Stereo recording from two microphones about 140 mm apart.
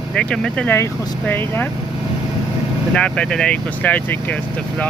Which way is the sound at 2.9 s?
5° left (ahead or behind).